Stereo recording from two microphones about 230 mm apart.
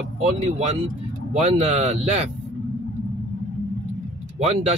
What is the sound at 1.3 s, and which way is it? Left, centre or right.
Speech, right.